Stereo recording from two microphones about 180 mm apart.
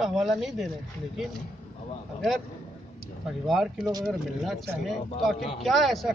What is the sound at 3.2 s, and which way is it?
A man's voice, centre (ahead or behind).